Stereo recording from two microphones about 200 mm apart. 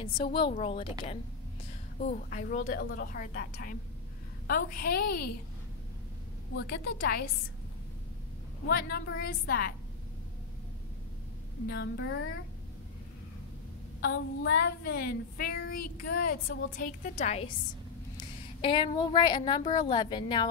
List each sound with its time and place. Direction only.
0.0 s a woman's voice: 25° left (ahead or behind)
2.0 s speech: 40° left (ahead or behind)
6.5 s a woman's voice: 55° left (ahead or behind)
8.6 s speech: 55° left (ahead or behind)
11.6 s a woman's voice: 55° left (ahead or behind); by 12.4 s 70° left (ahead or behind)
14.1 s a woman's voice: 55° left (ahead or behind); by 20.4 s 20° left (ahead or behind)